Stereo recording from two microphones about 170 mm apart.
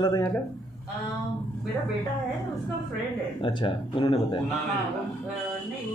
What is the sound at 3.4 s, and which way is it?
Speech, 30° left (ahead or behind).